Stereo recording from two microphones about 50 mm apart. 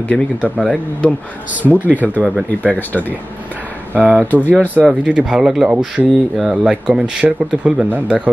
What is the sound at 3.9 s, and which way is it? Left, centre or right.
Speech, right.